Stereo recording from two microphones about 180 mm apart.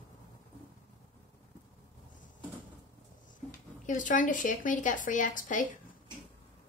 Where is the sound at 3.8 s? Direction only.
45° left (ahead or behind).